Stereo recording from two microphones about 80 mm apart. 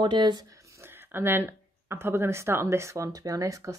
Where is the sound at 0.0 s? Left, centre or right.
Right.